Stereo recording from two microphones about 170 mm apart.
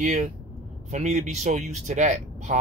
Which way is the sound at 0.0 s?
45° right (ahead or behind).